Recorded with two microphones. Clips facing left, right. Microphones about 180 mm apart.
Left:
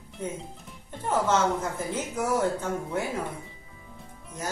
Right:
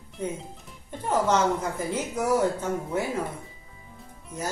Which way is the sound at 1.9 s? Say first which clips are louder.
Right 3 dB; 10° right (ahead or behind).